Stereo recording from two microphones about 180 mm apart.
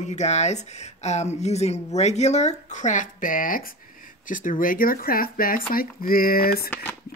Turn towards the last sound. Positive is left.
turn(degrees=10)  # may be behind; listen again after turning